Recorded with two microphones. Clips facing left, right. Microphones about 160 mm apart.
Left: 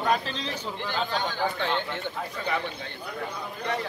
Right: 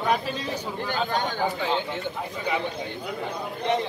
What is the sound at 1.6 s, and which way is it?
Speech, 10° right (ahead or behind).